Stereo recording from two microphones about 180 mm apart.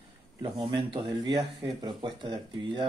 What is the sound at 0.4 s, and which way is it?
Speech, 25° right (ahead or behind).